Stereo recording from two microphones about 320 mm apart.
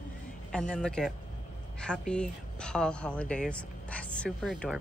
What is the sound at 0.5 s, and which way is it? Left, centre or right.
A woman's voice, centre.